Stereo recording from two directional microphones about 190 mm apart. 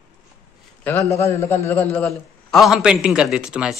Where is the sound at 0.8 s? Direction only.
10° left (ahead or behind).